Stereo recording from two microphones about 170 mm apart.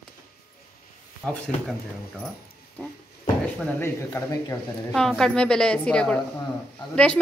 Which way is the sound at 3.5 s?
15° left (ahead or behind).